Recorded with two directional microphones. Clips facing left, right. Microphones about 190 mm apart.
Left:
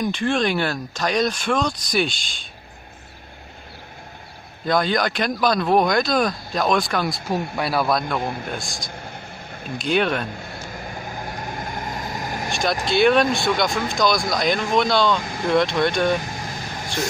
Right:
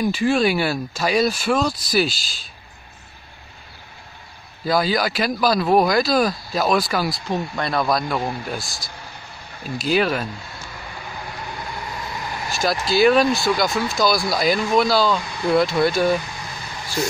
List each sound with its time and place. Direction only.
0.0 s speech: 5° right (ahead or behind)
4.6 s speech: 5° right (ahead or behind)
8.9 s vehicle: 50° left (ahead or behind)
9.8 s speech: 5° right (ahead or behind)
10.3 s vehicle: 50° left (ahead or behind)
12.8 s speech: centre (ahead or behind)
16.2 s vehicle: 45° left (ahead or behind)